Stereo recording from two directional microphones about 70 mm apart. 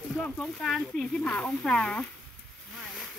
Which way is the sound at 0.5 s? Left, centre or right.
Centre.